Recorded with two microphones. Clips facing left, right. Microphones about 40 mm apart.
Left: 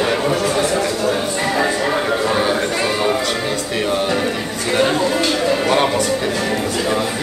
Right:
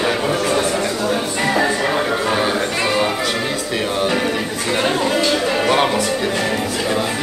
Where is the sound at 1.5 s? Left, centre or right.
Centre.